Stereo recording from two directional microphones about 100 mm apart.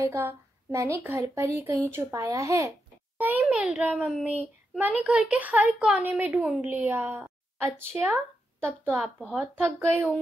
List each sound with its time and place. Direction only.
0.0 s a woman's voice: 25° right (ahead or behind)
3.2 s a woman's voice: 20° right (ahead or behind)